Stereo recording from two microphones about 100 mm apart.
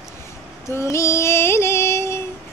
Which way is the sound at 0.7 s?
30° left (ahead or behind).